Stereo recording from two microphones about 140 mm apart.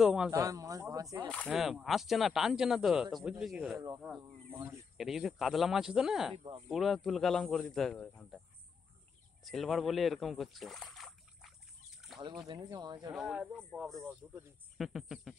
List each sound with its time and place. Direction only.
0.0 s speech: 5° right (ahead or behind)
0.3 s a man's voice: 25° right (ahead or behind)
1.5 s speech: centre (ahead or behind)
4.9 s speech: centre (ahead or behind)
6.3 s speech: 40° right (ahead or behind)
6.7 s speech: centre (ahead or behind)
9.4 s speech: centre (ahead or behind)
12.2 s speech: 35° right (ahead or behind)
13.1 s speech: 5° right (ahead or behind)
14.0 s speech: 10° right (ahead or behind)